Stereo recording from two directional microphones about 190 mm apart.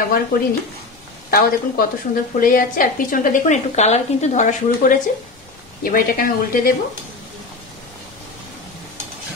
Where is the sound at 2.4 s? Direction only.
50° left (ahead or behind).